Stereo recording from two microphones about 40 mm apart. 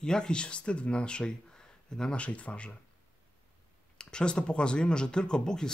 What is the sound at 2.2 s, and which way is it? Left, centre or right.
Speech, left.